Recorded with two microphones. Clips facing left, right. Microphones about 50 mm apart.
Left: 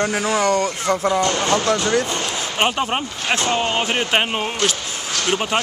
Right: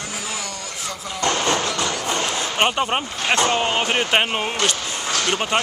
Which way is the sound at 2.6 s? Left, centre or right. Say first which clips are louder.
Even; centre.